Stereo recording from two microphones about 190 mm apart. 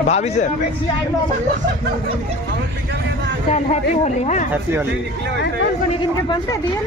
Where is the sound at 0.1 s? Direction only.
35° left (ahead or behind).